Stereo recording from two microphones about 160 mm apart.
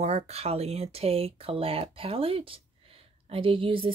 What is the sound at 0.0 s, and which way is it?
Speech, 40° right (ahead or behind).